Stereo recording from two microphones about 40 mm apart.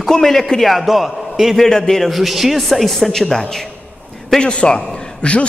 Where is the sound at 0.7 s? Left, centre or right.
Centre.